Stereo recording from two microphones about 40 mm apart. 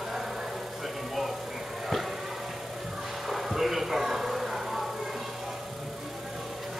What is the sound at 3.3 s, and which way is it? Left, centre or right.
Music, centre.